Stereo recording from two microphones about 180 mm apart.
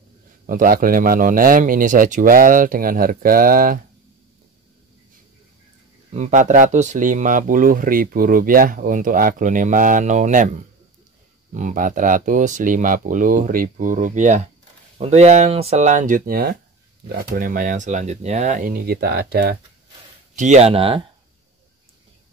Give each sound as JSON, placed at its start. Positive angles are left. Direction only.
{"t": 0.5, "sound": "speech", "side_deg": -50}
{"t": 6.1, "sound": "speech", "side_deg": -40}
{"t": 20.3, "sound": "speech", "side_deg": -40}